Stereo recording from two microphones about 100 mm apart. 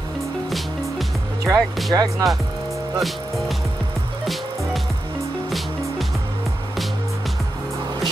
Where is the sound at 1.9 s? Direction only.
40° right (ahead or behind).